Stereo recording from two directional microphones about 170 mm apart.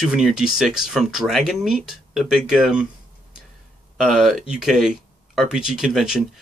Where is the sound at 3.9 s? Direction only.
Centre (ahead or behind).